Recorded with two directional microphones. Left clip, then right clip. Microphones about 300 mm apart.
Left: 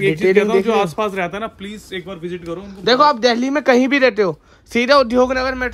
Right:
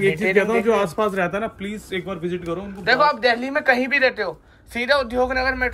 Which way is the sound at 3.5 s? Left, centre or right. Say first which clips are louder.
Left 4 dB; left.